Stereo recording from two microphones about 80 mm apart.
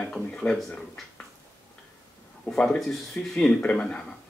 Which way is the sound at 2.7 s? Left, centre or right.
Centre.